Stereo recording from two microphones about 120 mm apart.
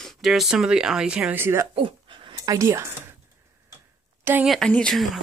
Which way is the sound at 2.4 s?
25° right (ahead or behind).